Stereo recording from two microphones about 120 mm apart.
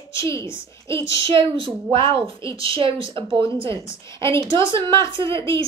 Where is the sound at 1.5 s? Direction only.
45° right (ahead or behind).